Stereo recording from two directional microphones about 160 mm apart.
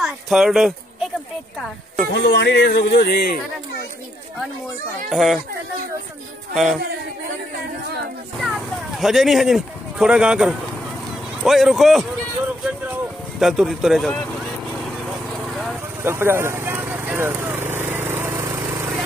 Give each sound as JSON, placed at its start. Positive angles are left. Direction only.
{"t": 0.0, "sound": "speech", "side_deg": 0}
{"t": 2.1, "sound": "speech", "side_deg": 90}
{"t": 5.1, "sound": "speech", "side_deg": 0}
{"t": 6.5, "sound": "speech", "side_deg": 0}
{"t": 8.4, "sound": "speech", "side_deg": 0}
{"t": 13.4, "sound": "speech", "side_deg": -5}
{"t": 14.7, "sound": "vehicle", "side_deg": 0}
{"t": 16.0, "sound": "a sound", "side_deg": -15}